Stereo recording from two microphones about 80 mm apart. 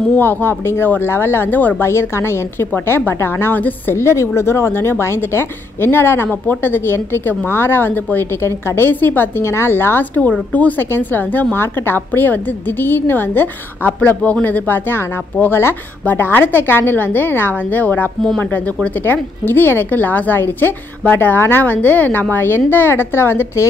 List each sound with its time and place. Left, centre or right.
0.2 s a woman's voice: left
1.9 s a woman's voice: left
4.0 s a woman's voice: left
19.4 s a woman's voice: left